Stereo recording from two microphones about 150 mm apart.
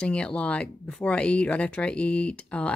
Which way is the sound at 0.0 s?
5° left (ahead or behind).